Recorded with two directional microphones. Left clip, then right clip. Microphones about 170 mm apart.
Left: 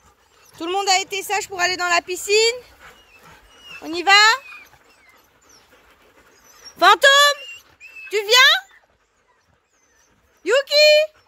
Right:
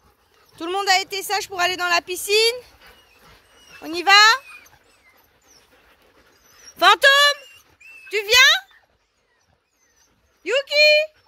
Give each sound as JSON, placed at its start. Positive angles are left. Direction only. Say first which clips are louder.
{"t": 0.6, "sound": "speech", "louder": "even", "side_deg": 5}
{"t": 3.8, "sound": "speech", "louder": "even", "side_deg": -10}
{"t": 6.6, "sound": "speech", "louder": "left 1 dB", "side_deg": 10}
{"t": 7.4, "sound": "a sound", "louder": "left 7 dB", "side_deg": -55}
{"t": 8.1, "sound": "speech", "louder": "left 1 dB", "side_deg": 15}
{"t": 10.4, "sound": "speech", "louder": "left 2 dB", "side_deg": 30}